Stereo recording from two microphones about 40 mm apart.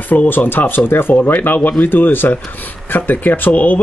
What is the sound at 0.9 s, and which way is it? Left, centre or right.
Speech, left.